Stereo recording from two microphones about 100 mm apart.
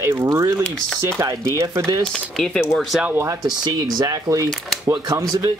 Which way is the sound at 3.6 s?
40° right (ahead or behind).